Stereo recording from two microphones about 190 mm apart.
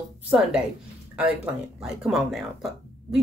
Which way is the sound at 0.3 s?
Centre (ahead or behind).